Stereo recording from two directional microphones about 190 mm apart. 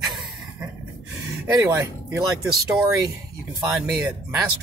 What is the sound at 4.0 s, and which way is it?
Speech, 10° right (ahead or behind).